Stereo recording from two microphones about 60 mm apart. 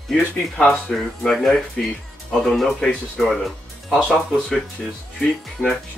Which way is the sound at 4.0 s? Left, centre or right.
Centre.